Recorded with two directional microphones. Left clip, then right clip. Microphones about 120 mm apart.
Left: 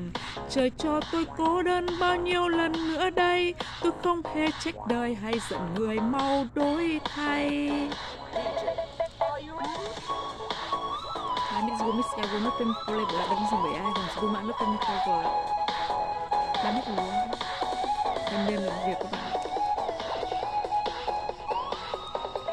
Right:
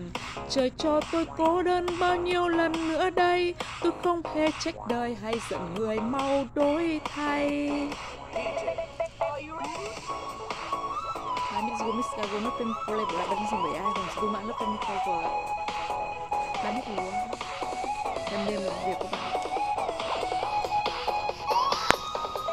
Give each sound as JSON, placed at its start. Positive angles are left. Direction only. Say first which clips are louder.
{"t": 0.6, "sound": "speech", "louder": "right 1 dB", "side_deg": 30}
{"t": 1.9, "sound": "speech", "louder": "even", "side_deg": 20}
{"t": 2.1, "sound": "speech", "louder": "even", "side_deg": 30}
{"t": 6.7, "sound": "speech", "louder": "even", "side_deg": 35}
{"t": 11.5, "sound": "a sound", "louder": "left 1 dB", "side_deg": 45}
{"t": 12.2, "sound": "speech", "louder": "left 1 dB", "side_deg": 20}
{"t": 13.6, "sound": "speech", "louder": "even", "side_deg": 30}
{"t": 14.6, "sound": "music", "louder": "left 4 dB", "side_deg": 20}